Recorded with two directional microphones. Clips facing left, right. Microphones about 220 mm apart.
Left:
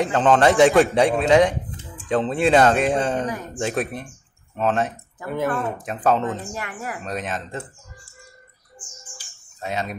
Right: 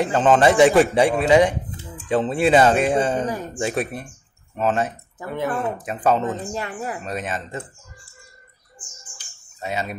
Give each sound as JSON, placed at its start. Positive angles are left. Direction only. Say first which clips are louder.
{"t": 0.0, "sound": "a man's voice", "louder": "right 1 dB", "side_deg": 0}
{"t": 6.4, "sound": "speech", "louder": "right 3 dB", "side_deg": -30}
{"t": 7.0, "sound": "a man's voice", "louder": "even", "side_deg": 0}
{"t": 9.3, "sound": "a sound", "louder": "even", "side_deg": 0}